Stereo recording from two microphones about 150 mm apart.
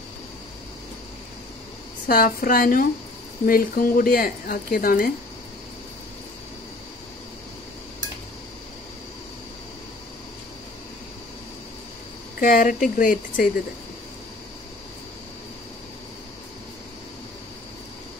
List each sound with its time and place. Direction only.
2.0 s speech: 75° left (ahead or behind)
12.4 s speech: 70° left (ahead or behind)